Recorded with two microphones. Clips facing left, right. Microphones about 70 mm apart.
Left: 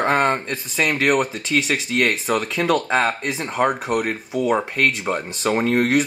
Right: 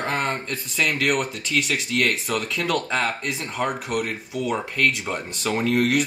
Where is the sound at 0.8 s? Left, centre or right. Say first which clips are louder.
Left 3 dB; left.